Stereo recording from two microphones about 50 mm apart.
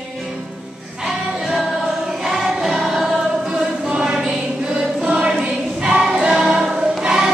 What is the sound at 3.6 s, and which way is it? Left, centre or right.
Music, centre.